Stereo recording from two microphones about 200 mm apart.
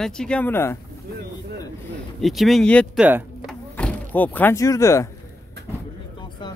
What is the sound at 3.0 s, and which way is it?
Door, 5° right (ahead or behind).